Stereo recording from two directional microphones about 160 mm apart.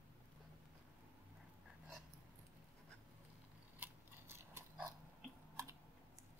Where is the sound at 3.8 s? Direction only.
15° right (ahead or behind).